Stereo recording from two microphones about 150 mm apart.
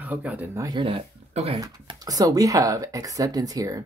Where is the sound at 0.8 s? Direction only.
40° right (ahead or behind).